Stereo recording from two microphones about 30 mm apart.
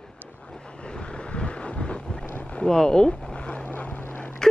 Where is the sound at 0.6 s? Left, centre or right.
Left.